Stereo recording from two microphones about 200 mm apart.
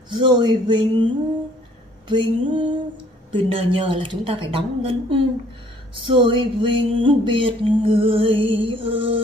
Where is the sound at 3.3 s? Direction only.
25° right (ahead or behind).